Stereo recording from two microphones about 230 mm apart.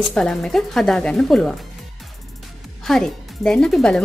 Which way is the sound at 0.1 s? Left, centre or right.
Centre.